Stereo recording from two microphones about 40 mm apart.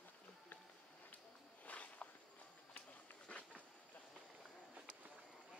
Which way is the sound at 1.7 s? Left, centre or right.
Left.